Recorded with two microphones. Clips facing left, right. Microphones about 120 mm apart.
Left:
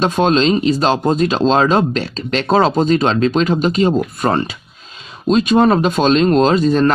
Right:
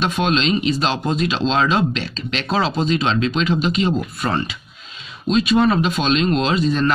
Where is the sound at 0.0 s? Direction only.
40° left (ahead or behind).